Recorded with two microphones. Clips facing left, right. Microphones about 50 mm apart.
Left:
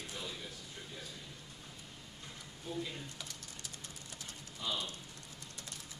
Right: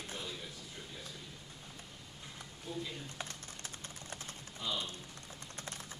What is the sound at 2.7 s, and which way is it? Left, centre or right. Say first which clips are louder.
Speech: left 1 dB; centre.